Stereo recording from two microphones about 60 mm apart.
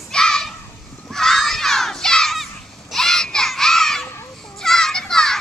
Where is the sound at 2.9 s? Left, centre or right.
Centre.